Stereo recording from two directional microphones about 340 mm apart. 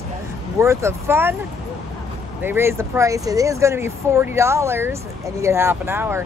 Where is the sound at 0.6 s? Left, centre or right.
Centre.